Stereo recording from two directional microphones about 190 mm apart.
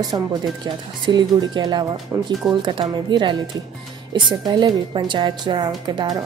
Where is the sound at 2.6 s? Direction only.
25° right (ahead or behind).